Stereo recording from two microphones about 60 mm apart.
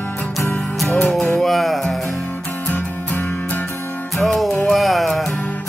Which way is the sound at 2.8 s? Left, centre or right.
Left.